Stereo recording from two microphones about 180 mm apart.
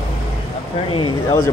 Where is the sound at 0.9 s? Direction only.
25° left (ahead or behind).